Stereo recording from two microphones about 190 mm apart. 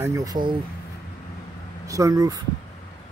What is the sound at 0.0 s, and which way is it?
Speech, 15° right (ahead or behind).